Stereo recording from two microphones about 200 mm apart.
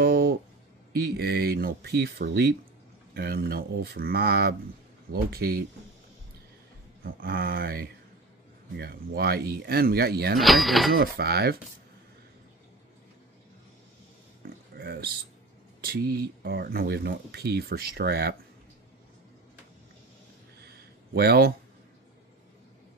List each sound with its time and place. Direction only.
0.0 s a sound: 55° right (ahead or behind)
1.0 s speech: 50° right (ahead or behind)
7.0 s speech: 45° right (ahead or behind)
10.3 s speech: centre (ahead or behind)
11.0 s speech: 50° right (ahead or behind)
14.4 s oink: 55° right (ahead or behind)
15.8 s speech: 50° right (ahead or behind)
20.6 s a sound: 55° right (ahead or behind)